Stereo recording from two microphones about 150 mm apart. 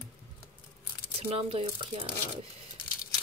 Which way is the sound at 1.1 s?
40° right (ahead or behind).